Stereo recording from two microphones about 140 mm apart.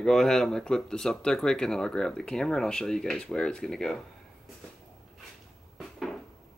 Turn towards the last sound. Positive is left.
turn(degrees=0)  # may be behind; listen again after turning